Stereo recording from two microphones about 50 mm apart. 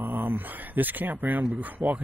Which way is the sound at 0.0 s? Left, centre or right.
Right.